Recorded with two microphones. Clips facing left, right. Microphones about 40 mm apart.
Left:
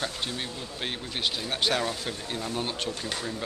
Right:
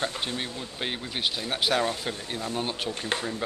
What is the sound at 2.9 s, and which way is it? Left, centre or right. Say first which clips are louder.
Speech: right 3 dB; right.